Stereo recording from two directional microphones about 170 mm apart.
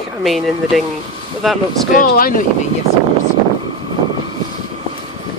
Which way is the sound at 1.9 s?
55° left (ahead or behind).